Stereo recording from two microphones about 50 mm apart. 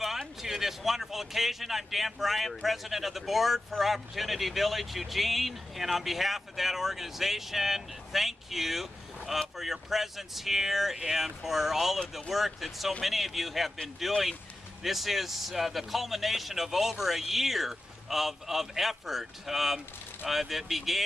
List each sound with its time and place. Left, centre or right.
0.0 s speech: centre